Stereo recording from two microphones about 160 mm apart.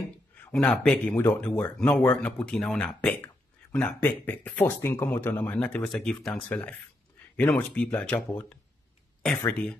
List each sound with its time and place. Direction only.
0.4 s speech: 10° left (ahead or behind)
9.5 s speech: 5° left (ahead or behind)